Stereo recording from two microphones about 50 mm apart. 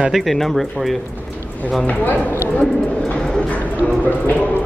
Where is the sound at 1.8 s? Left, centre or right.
Left.